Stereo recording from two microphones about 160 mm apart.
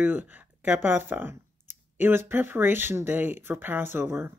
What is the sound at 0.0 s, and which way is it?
Speech, 10° right (ahead or behind).